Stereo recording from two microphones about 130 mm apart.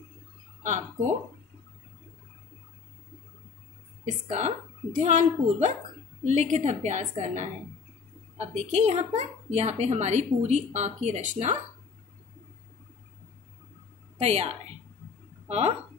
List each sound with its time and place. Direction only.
0.7 s speech: 65° right (ahead or behind)
4.0 s a woman's voice: 60° right (ahead or behind)
8.7 s a woman's voice: 60° right (ahead or behind)
14.2 s a woman's voice: 55° right (ahead or behind)